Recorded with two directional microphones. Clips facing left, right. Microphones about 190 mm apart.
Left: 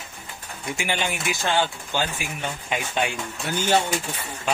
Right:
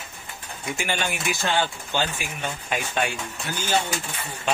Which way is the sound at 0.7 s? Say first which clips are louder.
Left 1 dB; 15° left (ahead or behind).